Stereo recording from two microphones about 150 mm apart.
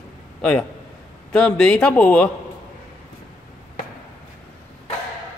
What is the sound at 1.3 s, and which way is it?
Speech, 5° left (ahead or behind).